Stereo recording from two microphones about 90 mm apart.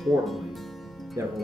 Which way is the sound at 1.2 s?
35° right (ahead or behind).